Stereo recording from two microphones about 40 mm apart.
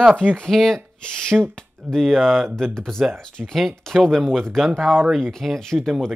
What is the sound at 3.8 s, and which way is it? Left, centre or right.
Speech, centre.